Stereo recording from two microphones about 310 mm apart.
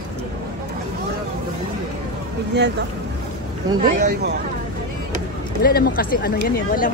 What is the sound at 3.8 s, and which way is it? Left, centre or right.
Speech, right.